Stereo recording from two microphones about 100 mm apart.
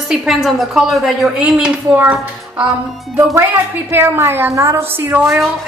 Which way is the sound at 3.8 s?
25° right (ahead or behind).